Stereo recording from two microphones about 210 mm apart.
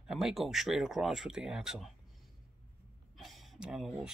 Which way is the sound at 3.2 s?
Centre (ahead or behind).